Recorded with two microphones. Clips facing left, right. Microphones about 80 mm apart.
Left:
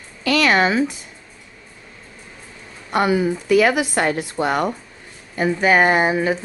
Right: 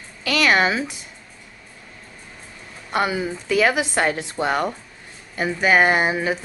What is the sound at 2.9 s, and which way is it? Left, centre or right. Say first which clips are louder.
Speech: left 4 dB; left.